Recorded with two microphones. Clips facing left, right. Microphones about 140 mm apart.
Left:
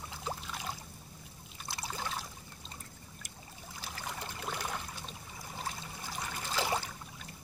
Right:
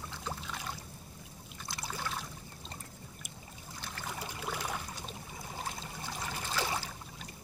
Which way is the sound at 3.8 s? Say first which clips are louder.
Right 1 dB; 5° left (ahead or behind).